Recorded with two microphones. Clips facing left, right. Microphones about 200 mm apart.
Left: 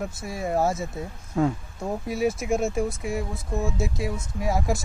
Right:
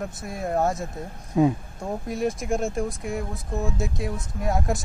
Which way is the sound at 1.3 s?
15° right (ahead or behind).